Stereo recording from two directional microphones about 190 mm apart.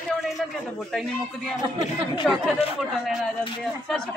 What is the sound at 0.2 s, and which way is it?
A man's voice, centre (ahead or behind).